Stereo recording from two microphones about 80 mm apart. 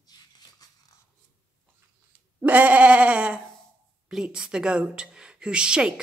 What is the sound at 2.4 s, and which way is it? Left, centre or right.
A woman's voice, centre.